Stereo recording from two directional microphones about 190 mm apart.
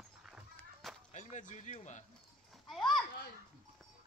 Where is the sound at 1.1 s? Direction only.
40° left (ahead or behind).